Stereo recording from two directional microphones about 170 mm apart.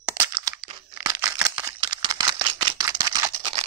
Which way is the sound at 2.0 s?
25° right (ahead or behind).